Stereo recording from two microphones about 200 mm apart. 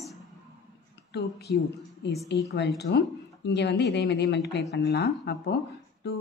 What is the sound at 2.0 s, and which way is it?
Speech, 60° left (ahead or behind).